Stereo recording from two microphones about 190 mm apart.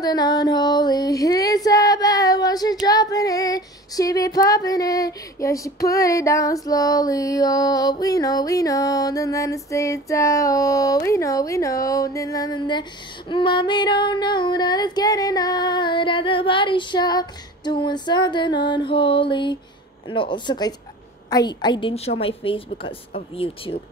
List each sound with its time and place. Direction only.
0.0 s child singing: 20° left (ahead or behind)